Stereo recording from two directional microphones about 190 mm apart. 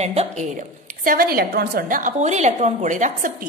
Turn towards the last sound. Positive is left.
turn(degrees=-40)  # may be behind; listen again after turning